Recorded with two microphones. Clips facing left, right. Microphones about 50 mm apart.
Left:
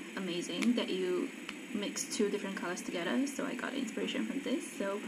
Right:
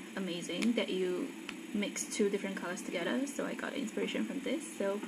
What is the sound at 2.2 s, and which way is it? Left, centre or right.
Speech, centre.